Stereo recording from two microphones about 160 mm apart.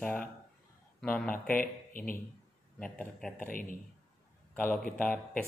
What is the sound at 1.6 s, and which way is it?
Speech, 60° left (ahead or behind).